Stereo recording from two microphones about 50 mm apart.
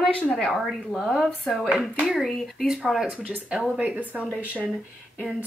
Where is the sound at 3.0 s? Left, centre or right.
Right.